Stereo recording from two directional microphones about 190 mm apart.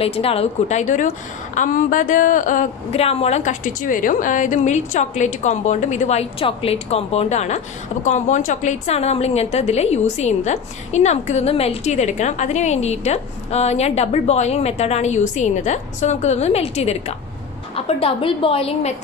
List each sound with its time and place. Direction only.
0.0 s a woman's voice: 30° left (ahead or behind)